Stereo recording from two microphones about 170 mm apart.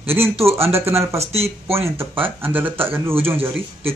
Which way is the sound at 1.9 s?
15° right (ahead or behind).